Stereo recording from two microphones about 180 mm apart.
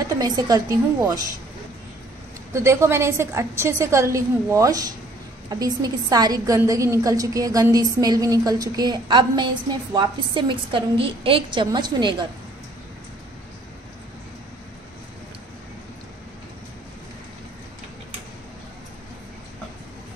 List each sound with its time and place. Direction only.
0.2 s a woman's voice: 20° right (ahead or behind)
2.5 s a woman's voice: 15° right (ahead or behind)